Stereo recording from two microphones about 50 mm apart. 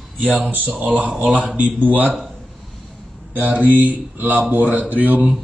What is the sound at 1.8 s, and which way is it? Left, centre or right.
Speech, right.